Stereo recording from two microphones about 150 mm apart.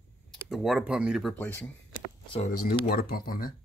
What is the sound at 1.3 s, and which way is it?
Speech, 10° left (ahead or behind).